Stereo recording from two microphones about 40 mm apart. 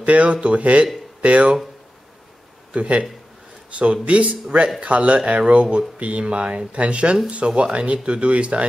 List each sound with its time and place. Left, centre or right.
0.0 s speech: right
2.7 s speech: right